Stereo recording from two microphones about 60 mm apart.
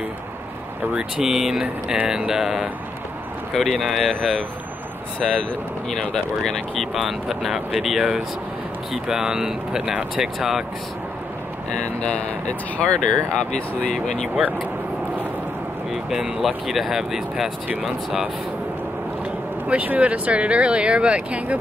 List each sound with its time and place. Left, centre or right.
0.9 s speech: centre
3.6 s speech: centre
11.7 s speech: centre
15.9 s speech: centre
19.7 s speech: right